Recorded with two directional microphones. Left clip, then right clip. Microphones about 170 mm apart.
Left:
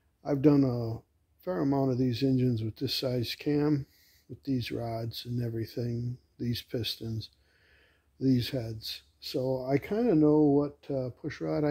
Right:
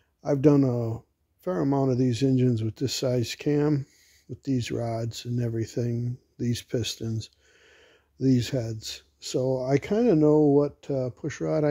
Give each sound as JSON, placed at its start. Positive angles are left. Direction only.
{"t": 0.2, "sound": "speech", "side_deg": -45}